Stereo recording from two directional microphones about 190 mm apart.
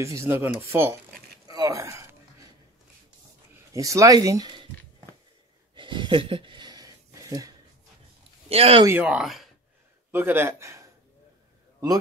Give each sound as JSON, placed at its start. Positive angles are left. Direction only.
{"t": 0.0, "sound": "a man's voice", "side_deg": -15}
{"t": 1.5, "sound": "a sound", "side_deg": -15}
{"t": 3.5, "sound": "speech", "side_deg": -15}
{"t": 5.8, "sound": "a sound", "side_deg": -25}
{"t": 8.5, "sound": "speech", "side_deg": -30}
{"t": 8.8, "sound": "speech", "side_deg": -5}
{"t": 10.1, "sound": "a man's voice", "side_deg": -10}